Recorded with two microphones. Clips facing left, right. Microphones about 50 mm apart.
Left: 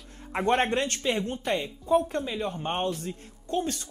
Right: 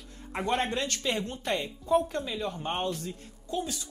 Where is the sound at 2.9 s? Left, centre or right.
Left.